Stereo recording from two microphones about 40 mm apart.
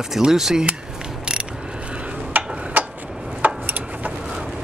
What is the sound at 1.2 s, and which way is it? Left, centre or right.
Mechanisms, right.